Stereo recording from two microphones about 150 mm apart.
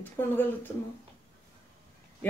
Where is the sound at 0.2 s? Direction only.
10° left (ahead or behind).